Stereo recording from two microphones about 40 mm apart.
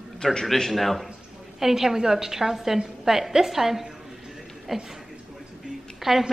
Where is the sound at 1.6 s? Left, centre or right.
Centre.